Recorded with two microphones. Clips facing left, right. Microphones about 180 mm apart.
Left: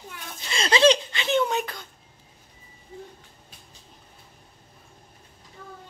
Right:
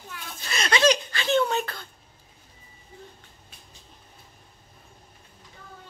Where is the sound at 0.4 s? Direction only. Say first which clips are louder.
Left 3 dB; 25° left (ahead or behind).